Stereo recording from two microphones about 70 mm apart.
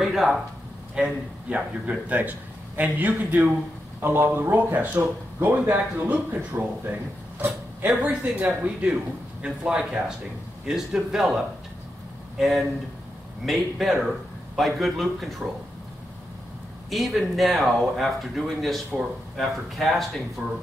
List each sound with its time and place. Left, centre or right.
0.0 s a man's voice: centre; by 7.0 s right
8.0 s a man's voice: right; by 15.4 s centre
16.9 s speech: centre